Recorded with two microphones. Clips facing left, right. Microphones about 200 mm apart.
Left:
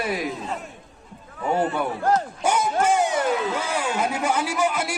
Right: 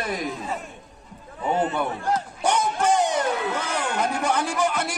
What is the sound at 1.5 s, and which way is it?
Speech, 20° right (ahead or behind).